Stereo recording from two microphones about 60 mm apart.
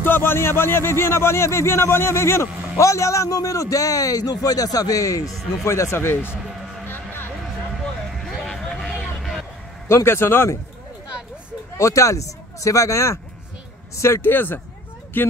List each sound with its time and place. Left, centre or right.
0.0 s speech: left
2.8 s a man's voice: left
5.6 s speech: left
8.5 s a sound: centre
9.8 s speech: left
11.7 s speech: left